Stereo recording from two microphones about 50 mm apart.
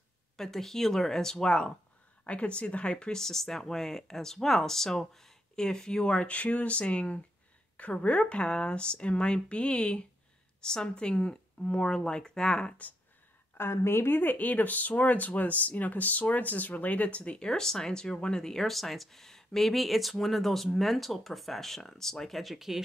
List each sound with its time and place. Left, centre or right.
0.4 s speech: centre
13.6 s speech: left
17.5 s speech: centre